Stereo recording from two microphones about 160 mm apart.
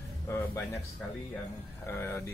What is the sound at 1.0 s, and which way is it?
Speech, centre (ahead or behind).